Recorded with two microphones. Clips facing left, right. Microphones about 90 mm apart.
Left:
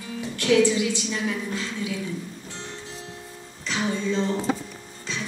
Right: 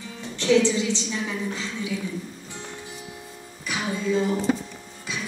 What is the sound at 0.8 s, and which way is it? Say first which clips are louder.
A woman's voice: left 1 dB; 20° right (ahead or behind).